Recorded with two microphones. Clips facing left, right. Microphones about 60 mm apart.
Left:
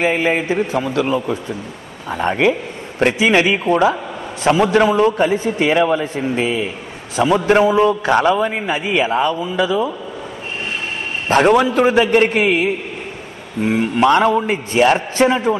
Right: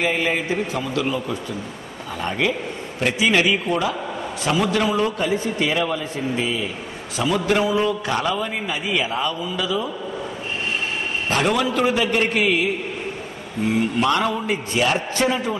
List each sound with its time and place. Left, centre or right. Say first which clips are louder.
0.0 s a man's voice: left 5 dB; left
11.2 s a man's voice: left 8 dB; left